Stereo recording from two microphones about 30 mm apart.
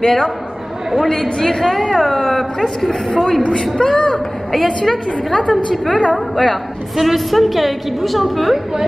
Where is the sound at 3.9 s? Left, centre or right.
Left.